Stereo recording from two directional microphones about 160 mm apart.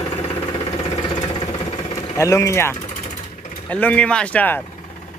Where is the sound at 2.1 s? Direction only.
20° left (ahead or behind).